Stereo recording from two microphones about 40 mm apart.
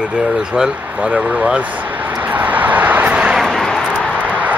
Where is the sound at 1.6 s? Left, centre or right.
Right.